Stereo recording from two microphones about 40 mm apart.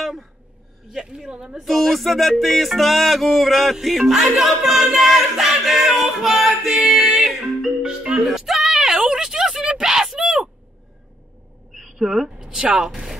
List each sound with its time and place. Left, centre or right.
0.0 s a man's voice: centre
1.3 s speech: right
1.6 s music: centre
7.8 s music: centre
8.3 s a sound: centre
11.7 s a sound: centre
12.4 s speech: right